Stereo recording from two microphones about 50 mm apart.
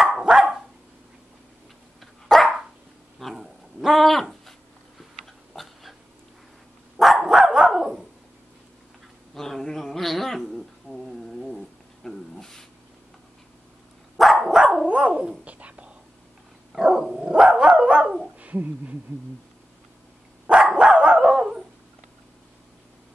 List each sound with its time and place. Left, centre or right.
0.2 s dog: centre
2.0 s dog: centre
3.3 s a sound: centre
5.2 s dog: centre
7.2 s dog: centre
9.3 s cat: centre
14.1 s dog: centre
14.9 s cat: right
16.7 s dog: centre
18.4 s speech: right
20.4 s dog: right